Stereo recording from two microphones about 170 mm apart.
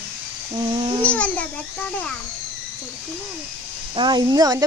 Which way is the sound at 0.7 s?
25° right (ahead or behind).